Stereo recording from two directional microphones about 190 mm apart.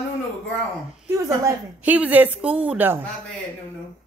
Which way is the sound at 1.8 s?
10° right (ahead or behind).